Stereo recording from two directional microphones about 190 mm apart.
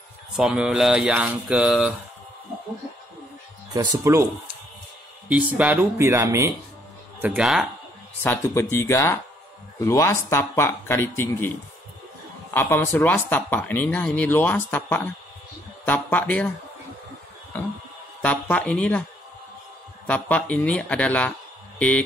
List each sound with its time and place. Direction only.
0.4 s a sound: 5° right (ahead or behind)
3.7 s speech: 20° right (ahead or behind)
5.3 s speech: 10° right (ahead or behind)
7.2 s a sound: 5° right (ahead or behind)
8.2 s speech: 10° left (ahead or behind)
12.5 s speech: 10° left (ahead or behind)
17.5 s speech: 10° left (ahead or behind)
20.1 s speech: 5° left (ahead or behind)